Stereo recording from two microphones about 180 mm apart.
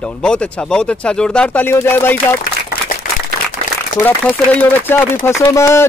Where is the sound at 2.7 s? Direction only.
55° left (ahead or behind).